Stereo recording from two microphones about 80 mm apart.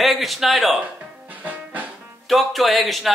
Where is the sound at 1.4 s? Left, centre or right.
Centre.